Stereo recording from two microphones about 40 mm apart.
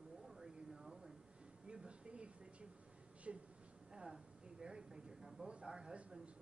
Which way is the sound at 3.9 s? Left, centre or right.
Right.